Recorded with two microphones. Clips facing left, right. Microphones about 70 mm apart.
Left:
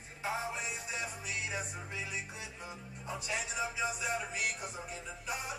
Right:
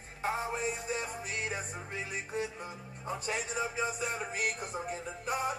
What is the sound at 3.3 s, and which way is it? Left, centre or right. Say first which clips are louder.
Music: right 2 dB; right.